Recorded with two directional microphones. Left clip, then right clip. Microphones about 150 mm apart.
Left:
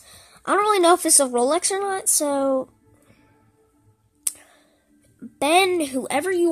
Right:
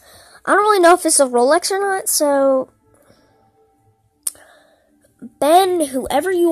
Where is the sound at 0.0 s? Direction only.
15° right (ahead or behind).